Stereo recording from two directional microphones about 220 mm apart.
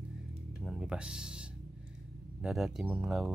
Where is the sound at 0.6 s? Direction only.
Centre (ahead or behind).